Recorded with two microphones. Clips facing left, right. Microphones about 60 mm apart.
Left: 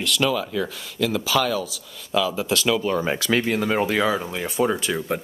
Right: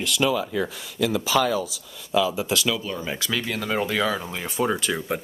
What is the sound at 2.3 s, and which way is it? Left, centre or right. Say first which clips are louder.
Speech: left 1 dB; centre.